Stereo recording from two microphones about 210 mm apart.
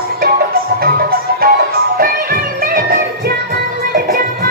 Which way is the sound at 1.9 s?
45° right (ahead or behind).